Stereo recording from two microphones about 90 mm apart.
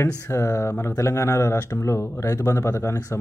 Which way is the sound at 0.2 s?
35° left (ahead or behind).